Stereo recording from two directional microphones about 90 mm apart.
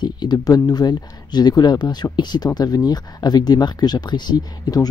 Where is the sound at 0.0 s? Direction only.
55° left (ahead or behind).